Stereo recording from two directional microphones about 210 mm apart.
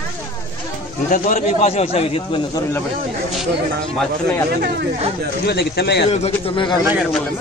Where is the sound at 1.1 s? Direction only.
40° left (ahead or behind).